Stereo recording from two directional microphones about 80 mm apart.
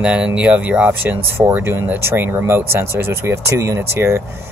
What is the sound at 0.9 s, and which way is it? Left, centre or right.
Speech, right.